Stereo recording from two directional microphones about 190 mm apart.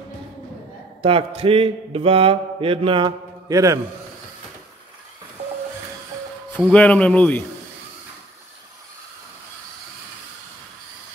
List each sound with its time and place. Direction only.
1.0 s mantra: 30° right (ahead or behind)
6.5 s speech: 5° left (ahead or behind)